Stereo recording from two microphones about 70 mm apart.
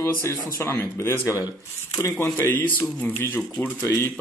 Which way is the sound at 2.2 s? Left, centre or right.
Left.